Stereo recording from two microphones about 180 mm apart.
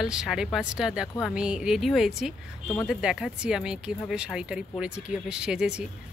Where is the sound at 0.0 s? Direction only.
5° right (ahead or behind).